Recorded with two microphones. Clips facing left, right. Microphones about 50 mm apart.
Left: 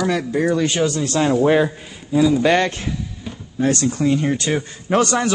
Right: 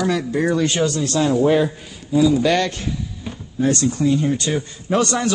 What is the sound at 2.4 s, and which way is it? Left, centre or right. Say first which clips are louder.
Speech: left 2 dB; left.